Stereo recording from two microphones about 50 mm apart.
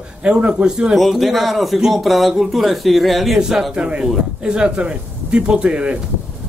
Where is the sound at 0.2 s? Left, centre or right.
Right.